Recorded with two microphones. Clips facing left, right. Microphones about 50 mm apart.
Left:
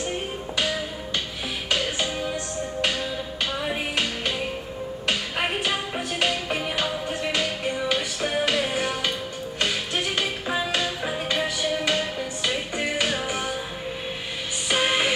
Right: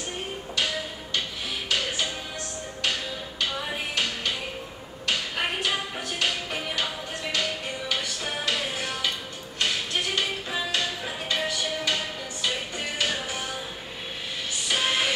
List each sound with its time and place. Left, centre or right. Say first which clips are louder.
0.6 s music: left 2 dB; centre
14.7 s music: left 3 dB; centre